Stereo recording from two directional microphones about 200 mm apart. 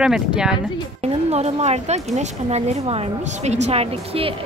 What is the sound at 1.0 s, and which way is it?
A woman's voice, 30° right (ahead or behind).